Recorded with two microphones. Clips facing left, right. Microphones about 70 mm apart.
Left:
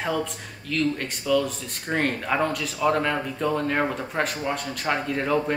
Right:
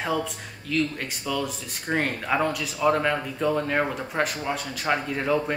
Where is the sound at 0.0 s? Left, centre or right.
Centre.